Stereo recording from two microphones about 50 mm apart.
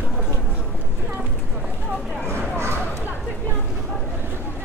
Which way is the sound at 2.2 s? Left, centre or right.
Right.